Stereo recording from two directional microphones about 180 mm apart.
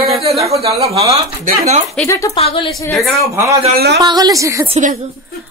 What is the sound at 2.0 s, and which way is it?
Speech, 15° left (ahead or behind).